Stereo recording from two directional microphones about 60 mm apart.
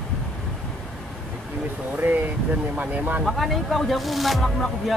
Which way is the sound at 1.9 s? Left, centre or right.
Right.